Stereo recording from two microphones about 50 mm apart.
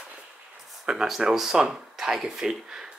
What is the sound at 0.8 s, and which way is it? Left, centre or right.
Speech, centre.